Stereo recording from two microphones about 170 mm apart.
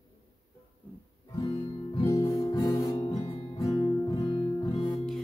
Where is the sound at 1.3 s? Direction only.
20° left (ahead or behind).